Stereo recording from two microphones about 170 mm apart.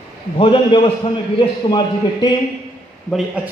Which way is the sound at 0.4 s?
30° left (ahead or behind).